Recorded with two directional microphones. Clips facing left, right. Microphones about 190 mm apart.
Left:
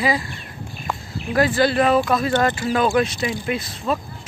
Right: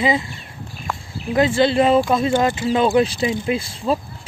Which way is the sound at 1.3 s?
25° right (ahead or behind).